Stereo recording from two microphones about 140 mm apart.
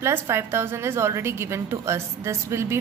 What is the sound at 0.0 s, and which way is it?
A woman's voice, 20° right (ahead or behind).